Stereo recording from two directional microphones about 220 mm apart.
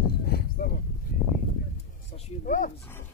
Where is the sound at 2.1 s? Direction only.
30° left (ahead or behind).